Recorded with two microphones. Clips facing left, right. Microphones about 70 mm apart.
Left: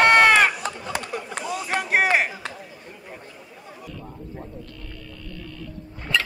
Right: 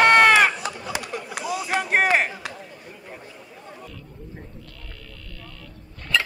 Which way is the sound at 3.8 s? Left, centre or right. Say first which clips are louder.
Left 3 dB; centre.